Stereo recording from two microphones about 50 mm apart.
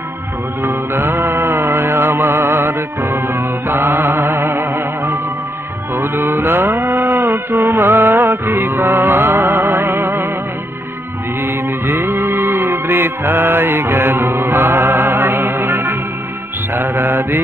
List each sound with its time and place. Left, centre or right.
0.6 s music: right
5.9 s music: right
9.3 s music: right
11.6 s music: right
16.7 s mantra: right